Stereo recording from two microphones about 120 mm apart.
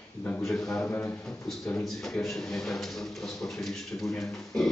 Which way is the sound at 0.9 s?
15° left (ahead or behind).